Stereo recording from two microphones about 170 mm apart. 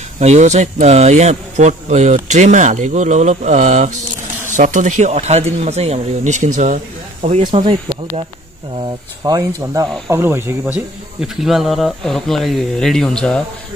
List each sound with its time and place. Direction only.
0.2 s speech: 40° right (ahead or behind)
8.7 s speech: 20° right (ahead or behind); by 13.4 s 5° left (ahead or behind)